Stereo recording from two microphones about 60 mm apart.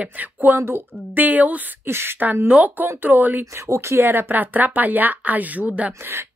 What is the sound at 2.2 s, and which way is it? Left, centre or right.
Speech, right.